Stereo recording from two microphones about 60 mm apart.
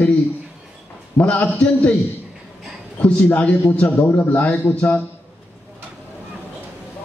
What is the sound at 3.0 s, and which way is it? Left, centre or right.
A man's voice, left.